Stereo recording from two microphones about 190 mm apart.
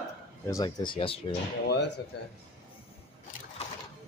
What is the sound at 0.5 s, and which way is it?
Speech, 20° left (ahead or behind).